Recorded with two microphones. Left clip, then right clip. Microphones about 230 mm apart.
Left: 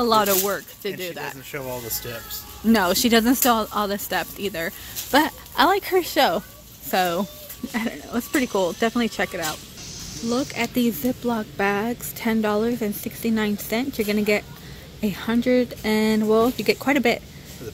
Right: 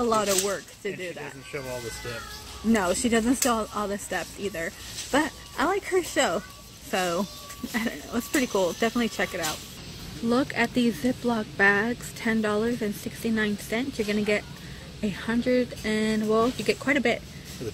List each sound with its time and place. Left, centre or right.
0.0 s speech: centre
2.7 s speech: centre
10.3 s speech: centre